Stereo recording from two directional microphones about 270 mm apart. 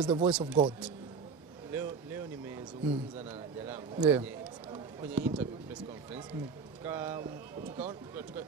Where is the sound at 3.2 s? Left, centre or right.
Centre.